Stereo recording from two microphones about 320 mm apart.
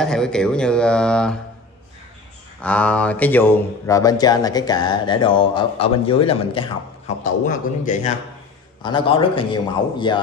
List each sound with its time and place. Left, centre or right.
0.0 s speech: centre
2.6 s speech: centre
7.8 s speech: left